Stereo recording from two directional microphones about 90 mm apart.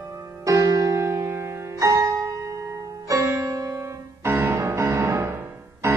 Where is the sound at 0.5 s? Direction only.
40° right (ahead or behind).